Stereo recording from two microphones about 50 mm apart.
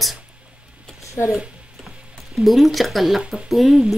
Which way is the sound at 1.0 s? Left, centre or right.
Left.